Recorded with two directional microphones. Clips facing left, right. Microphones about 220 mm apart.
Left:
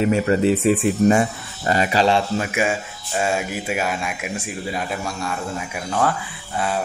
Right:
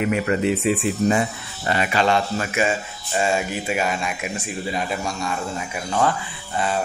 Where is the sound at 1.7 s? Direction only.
35° left (ahead or behind).